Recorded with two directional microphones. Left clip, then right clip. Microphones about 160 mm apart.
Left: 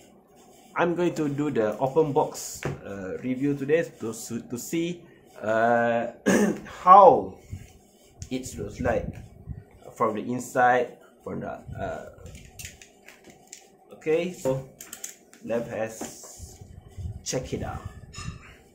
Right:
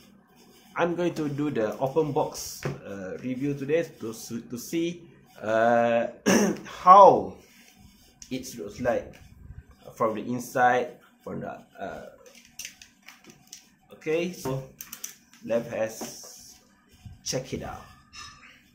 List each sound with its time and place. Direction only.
0.7 s speech: 20° left (ahead or behind); by 6.0 s centre (ahead or behind)
6.2 s speech: 15° right (ahead or behind)
6.6 s speech: centre (ahead or behind)
8.2 s speech: 15° left (ahead or behind)
13.9 s speech: 10° left (ahead or behind)
15.4 s speech: 5° left (ahead or behind)
17.2 s speech: 15° left (ahead or behind)